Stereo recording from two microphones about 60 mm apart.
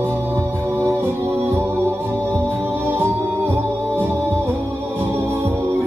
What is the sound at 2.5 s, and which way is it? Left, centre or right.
Music, right.